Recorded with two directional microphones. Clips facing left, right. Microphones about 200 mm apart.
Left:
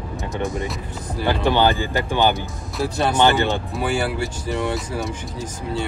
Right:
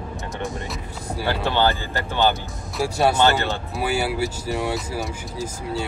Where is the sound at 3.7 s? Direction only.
5° right (ahead or behind).